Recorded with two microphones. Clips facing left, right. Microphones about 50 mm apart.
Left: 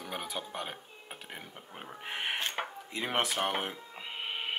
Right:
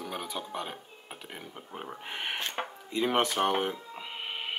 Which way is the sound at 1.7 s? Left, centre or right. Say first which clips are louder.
Right 8 dB; centre.